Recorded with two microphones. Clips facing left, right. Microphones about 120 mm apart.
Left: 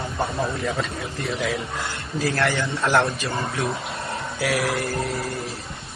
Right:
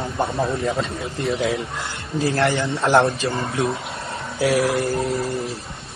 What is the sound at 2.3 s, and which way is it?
Speech, 25° right (ahead or behind).